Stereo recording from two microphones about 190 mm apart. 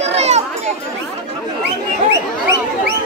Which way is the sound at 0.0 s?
35° right (ahead or behind).